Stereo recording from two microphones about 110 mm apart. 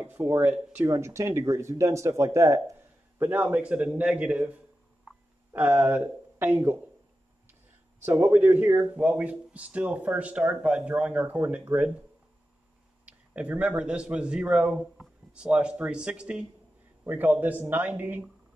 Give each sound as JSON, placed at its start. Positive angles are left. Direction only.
{"t": 0.0, "sound": "speech", "side_deg": -20}
{"t": 3.2, "sound": "speech", "side_deg": -15}
{"t": 5.5, "sound": "speech", "side_deg": -15}
{"t": 8.0, "sound": "speech", "side_deg": -20}
{"t": 13.0, "sound": "a man's voice", "side_deg": -10}